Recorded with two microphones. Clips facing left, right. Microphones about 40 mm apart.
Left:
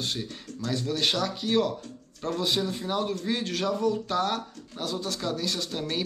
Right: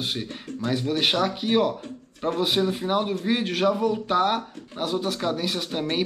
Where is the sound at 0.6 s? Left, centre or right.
Right.